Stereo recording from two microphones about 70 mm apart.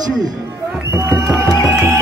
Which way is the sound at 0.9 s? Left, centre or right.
Right.